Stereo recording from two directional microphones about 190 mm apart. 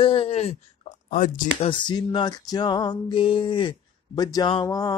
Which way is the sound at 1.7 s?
25° left (ahead or behind).